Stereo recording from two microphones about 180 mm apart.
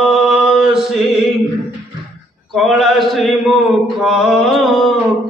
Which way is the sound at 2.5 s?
Centre (ahead or behind).